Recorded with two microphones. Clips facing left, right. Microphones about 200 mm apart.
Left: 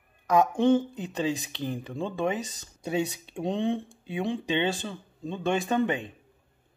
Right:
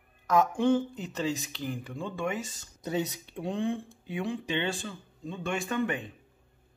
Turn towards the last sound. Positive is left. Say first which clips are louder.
# left 4 dB
turn(degrees=25)  # may be behind; listen again after turning